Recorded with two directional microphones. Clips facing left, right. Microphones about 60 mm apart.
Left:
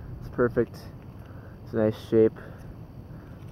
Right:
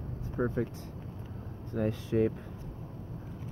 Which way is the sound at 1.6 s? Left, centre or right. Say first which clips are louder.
Left 8 dB; left.